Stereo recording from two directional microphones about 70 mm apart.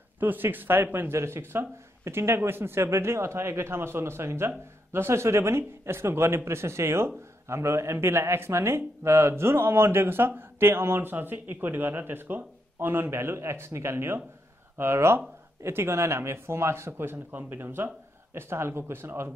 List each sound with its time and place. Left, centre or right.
0.2 s speech: right
1.1 s speech: right